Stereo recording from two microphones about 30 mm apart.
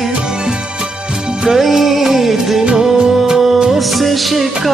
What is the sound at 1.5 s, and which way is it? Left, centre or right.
Music, centre.